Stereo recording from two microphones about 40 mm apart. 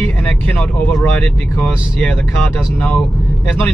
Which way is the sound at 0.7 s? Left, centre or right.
Left.